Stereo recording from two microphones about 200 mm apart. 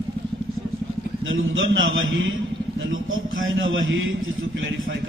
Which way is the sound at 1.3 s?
75° right (ahead or behind).